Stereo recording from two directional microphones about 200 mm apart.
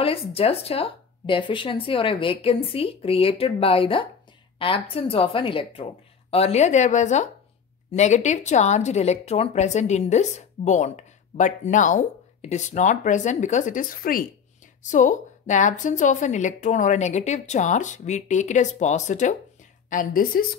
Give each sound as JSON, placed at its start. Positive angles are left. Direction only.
{"t": 0.0, "sound": "a woman's voice", "side_deg": 30}